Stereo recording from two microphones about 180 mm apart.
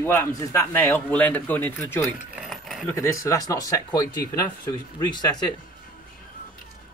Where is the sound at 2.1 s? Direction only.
5° right (ahead or behind).